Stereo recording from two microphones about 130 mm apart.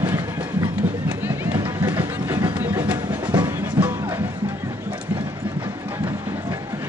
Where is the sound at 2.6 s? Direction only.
15° right (ahead or behind).